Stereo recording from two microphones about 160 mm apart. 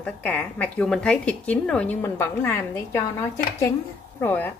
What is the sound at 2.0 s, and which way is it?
A woman's voice, 15° left (ahead or behind).